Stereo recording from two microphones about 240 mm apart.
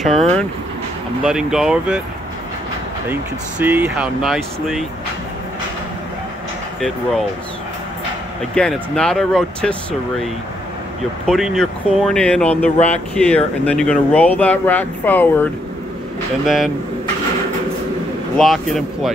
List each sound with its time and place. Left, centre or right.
0.0 s speech: centre
3.1 s speech: centre
6.8 s speech: centre
8.5 s speech: centre
11.2 s speech: centre
12.7 s speech: left
13.1 s speech: centre
16.4 s speech: centre
18.4 s speech: centre